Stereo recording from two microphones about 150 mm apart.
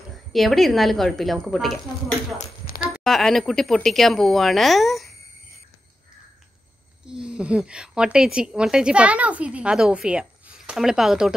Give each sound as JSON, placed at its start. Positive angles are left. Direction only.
{"t": 0.3, "sound": "a woman's voice", "side_deg": 0}
{"t": 2.3, "sound": "a sound", "side_deg": 65}
{"t": 3.0, "sound": "a woman's voice", "side_deg": 0}
{"t": 7.2, "sound": "a woman's voice", "side_deg": -5}